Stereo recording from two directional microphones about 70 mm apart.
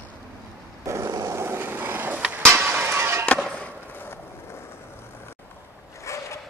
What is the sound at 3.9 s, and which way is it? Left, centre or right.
Skateboard, left.